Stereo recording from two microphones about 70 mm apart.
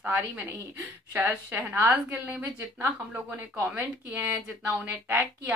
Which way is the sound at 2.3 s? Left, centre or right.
Right.